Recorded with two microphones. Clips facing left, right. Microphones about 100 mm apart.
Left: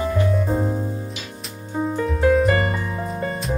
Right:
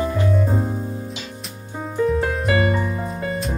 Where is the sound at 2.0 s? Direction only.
Centre (ahead or behind).